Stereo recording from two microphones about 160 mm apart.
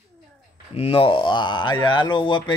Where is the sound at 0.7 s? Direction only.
40° left (ahead or behind).